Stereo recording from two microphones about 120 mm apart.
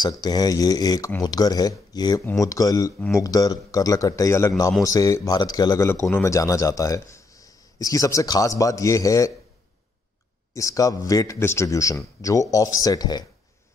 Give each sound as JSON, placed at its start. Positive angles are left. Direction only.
{"t": 0.2, "sound": "a man's voice", "side_deg": 35}
{"t": 6.0, "sound": "a man's voice", "side_deg": 20}
{"t": 10.5, "sound": "a man's voice", "side_deg": 25}